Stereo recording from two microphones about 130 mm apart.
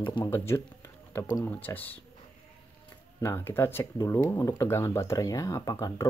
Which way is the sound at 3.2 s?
20° left (ahead or behind).